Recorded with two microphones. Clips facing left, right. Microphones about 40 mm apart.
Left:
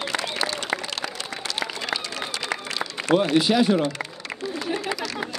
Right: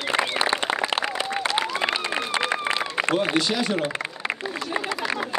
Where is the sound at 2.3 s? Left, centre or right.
Right.